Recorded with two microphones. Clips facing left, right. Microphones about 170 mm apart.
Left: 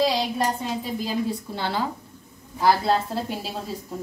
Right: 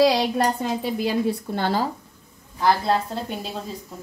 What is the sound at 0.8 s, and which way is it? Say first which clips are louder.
A woman's voice: right 5 dB; 70° right (ahead or behind).